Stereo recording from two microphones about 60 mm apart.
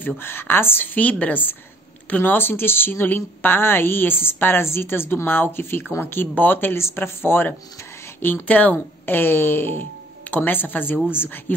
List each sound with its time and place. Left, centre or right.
0.0 s a woman's voice: left
0.9 s a woman's voice: left
8.5 s a woman's voice: left
8.7 s a woman's voice: left